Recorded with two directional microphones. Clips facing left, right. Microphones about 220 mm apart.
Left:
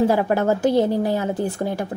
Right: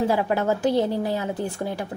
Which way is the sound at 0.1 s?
45° left (ahead or behind).